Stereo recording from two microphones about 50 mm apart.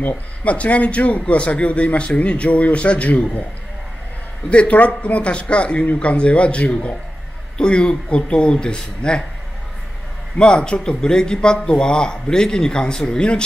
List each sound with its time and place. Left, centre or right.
0.4 s a man's voice: left
4.5 s a man's voice: left
10.3 s a man's voice: centre